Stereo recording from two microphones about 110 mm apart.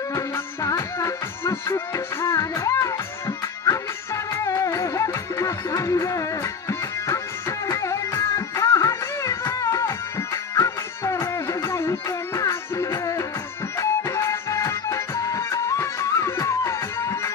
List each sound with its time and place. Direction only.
0.1 s music: 30° left (ahead or behind)